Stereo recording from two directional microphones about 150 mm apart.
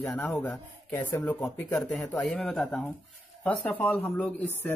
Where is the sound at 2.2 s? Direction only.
5° left (ahead or behind).